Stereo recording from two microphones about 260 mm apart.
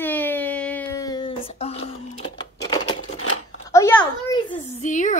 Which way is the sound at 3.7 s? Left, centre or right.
Centre.